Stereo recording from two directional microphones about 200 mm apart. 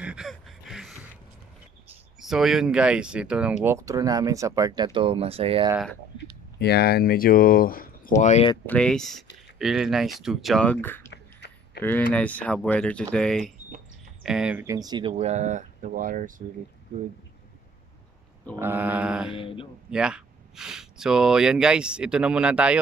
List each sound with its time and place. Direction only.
0.0 s gasp: 5° right (ahead or behind)
2.1 s speech: centre (ahead or behind); by 5.7 s 30° right (ahead or behind)
6.6 s speech: 55° left (ahead or behind)
8.2 s speech: 35° left (ahead or behind)
8.6 s speech: 5° left (ahead or behind)
11.1 s a sound: 60° left (ahead or behind)
11.8 s speech: 10° left (ahead or behind); by 15.1 s 20° right (ahead or behind)
15.1 s speech: 35° right (ahead or behind)
18.6 s speech: 10° right (ahead or behind)
19.4 s a man's voice: 25° left (ahead or behind)
19.9 s speech: 5° right (ahead or behind)